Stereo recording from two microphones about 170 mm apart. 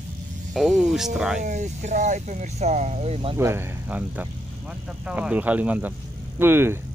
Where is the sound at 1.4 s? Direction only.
45° right (ahead or behind).